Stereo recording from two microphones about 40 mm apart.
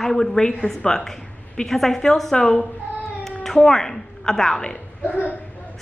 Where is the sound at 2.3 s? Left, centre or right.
Left.